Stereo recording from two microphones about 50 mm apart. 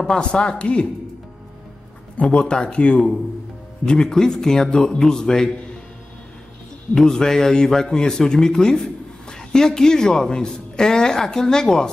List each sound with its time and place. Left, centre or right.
0.0 s speech: centre
2.2 s speech: centre
7.0 s speech: centre